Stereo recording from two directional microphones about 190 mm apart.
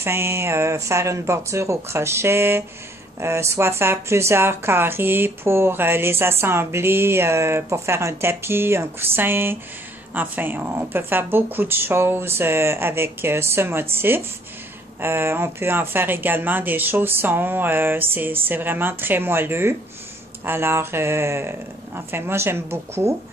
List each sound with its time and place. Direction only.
0.0 s speech: 15° right (ahead or behind)